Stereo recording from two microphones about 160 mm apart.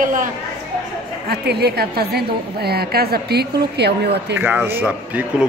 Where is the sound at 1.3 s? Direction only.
85° right.